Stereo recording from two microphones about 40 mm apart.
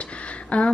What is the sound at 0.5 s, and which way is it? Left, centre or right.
Speech, left.